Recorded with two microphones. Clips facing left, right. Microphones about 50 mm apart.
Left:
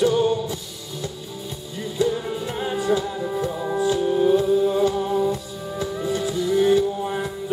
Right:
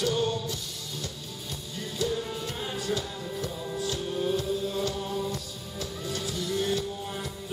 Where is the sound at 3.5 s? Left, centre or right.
Left.